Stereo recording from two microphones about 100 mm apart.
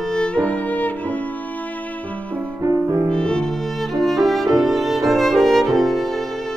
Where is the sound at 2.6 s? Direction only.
35° right (ahead or behind).